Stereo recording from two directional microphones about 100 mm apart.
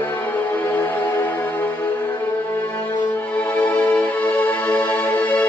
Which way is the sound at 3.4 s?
15° left (ahead or behind).